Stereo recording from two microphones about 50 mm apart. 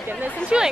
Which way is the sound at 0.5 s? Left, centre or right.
Centre.